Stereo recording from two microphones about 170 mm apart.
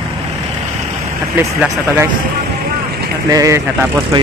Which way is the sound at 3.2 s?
20° right (ahead or behind).